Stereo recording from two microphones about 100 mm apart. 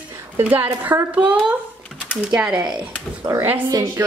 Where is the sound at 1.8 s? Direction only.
10° left (ahead or behind).